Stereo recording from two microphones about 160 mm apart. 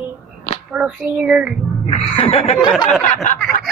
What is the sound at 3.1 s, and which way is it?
Snicker, 50° left (ahead or behind).